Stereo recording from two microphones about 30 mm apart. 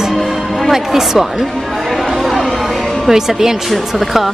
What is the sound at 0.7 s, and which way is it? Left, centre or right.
Speech, centre.